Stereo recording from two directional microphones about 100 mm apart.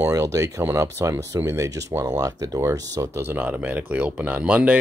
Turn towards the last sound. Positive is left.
turn(degrees=-15)  # may be behind; listen again after turning